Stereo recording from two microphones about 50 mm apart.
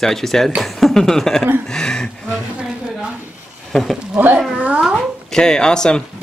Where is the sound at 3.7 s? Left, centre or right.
Centre.